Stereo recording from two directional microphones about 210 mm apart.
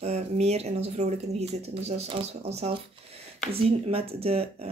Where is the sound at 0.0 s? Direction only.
30° right (ahead or behind).